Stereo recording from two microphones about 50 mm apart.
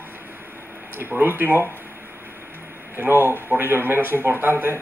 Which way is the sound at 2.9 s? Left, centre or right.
Right.